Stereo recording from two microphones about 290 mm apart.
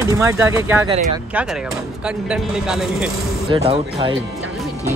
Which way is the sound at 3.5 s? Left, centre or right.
Right.